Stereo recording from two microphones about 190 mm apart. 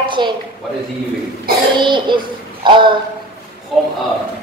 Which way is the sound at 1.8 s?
25° right (ahead or behind).